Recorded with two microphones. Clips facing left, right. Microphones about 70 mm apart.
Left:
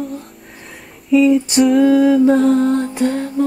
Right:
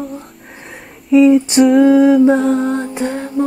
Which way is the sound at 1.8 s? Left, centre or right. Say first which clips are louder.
Right 2 dB; centre.